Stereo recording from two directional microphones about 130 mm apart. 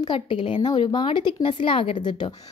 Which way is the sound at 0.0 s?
40° left (ahead or behind).